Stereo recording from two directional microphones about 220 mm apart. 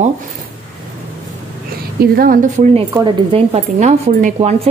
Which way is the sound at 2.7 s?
25° right (ahead or behind).